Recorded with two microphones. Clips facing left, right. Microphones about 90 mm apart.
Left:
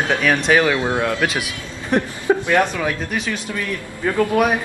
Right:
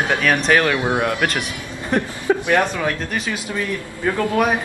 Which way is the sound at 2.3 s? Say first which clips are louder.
Left 1 dB; 15° left (ahead or behind).